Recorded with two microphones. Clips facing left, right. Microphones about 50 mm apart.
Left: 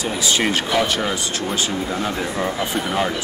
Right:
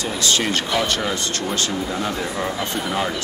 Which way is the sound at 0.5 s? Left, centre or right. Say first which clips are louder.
Left 2 dB; centre.